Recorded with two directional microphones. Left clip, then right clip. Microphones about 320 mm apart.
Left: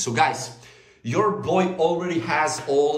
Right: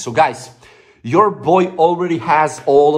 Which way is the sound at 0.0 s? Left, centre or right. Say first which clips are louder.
Right 6 dB; centre.